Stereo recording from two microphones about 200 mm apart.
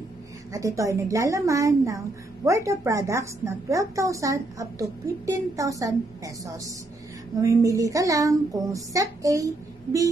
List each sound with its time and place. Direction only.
0.5 s a woman's voice: 15° right (ahead or behind)